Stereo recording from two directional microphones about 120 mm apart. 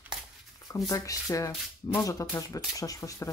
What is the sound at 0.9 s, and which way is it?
Speech, 30° left (ahead or behind).